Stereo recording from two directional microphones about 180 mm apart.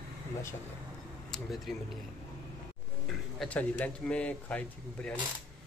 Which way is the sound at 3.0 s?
5° left (ahead or behind).